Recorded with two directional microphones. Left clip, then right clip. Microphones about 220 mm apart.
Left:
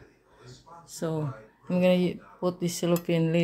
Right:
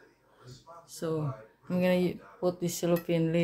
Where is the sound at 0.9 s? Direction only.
25° left (ahead or behind).